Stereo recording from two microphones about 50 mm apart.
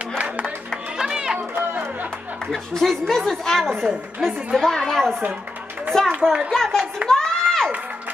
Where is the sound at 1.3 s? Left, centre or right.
Right.